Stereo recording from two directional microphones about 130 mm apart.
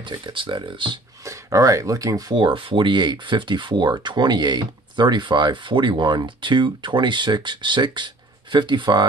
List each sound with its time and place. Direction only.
0.0 s speech: 40° right (ahead or behind)
1.2 s speech: 25° right (ahead or behind)